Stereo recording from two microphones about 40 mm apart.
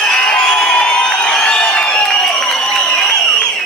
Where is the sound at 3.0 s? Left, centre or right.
Left.